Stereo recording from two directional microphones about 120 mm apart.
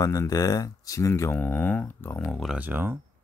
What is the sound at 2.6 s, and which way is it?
Speech, 15° right (ahead or behind).